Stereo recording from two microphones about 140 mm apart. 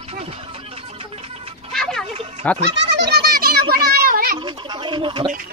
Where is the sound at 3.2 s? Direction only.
90° right.